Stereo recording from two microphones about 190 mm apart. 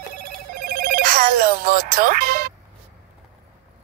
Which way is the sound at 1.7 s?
50° right (ahead or behind).